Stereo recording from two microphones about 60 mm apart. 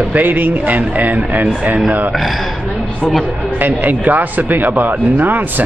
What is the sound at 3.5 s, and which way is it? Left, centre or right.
Speech, right.